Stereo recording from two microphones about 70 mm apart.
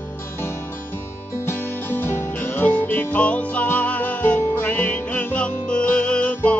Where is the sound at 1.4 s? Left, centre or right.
Left.